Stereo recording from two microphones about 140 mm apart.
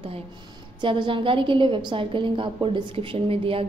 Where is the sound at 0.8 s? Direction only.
35° right (ahead or behind).